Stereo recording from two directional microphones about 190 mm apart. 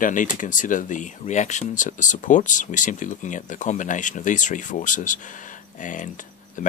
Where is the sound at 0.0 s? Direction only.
45° left (ahead or behind).